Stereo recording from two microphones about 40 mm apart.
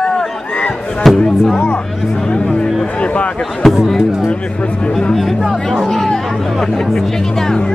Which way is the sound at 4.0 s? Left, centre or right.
Centre.